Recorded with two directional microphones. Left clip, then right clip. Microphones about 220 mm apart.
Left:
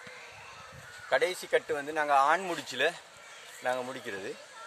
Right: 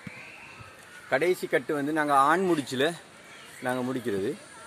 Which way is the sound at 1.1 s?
Centre (ahead or behind).